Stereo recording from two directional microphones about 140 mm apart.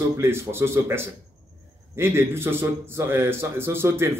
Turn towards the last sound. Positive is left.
turn(degrees=-20)  # may be behind; listen again after turning